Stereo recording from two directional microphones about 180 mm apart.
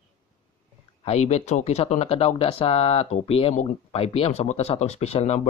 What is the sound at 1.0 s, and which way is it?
Speech, 35° left (ahead or behind).